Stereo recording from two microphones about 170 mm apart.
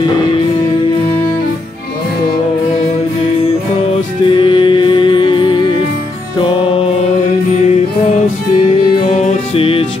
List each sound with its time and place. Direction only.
4.4 s music: 30° left (ahead or behind)
9.1 s music: 35° left (ahead or behind)